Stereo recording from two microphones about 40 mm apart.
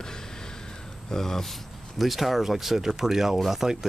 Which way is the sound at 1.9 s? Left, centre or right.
Centre.